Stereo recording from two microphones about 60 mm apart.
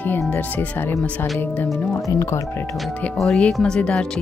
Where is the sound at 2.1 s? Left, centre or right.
Left.